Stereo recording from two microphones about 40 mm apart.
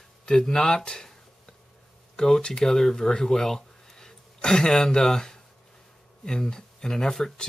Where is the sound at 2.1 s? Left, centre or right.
Centre.